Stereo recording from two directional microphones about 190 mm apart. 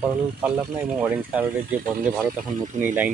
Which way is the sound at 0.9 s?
10° right (ahead or behind).